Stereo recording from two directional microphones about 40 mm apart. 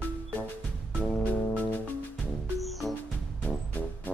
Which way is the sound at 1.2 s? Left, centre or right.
Left.